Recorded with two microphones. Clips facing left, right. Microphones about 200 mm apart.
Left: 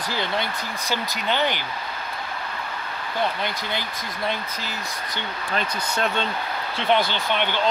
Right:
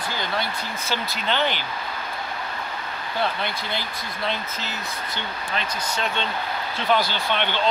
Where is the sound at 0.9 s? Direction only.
15° left (ahead or behind).